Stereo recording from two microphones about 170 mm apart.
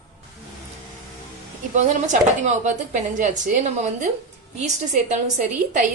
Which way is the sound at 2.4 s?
45° right (ahead or behind).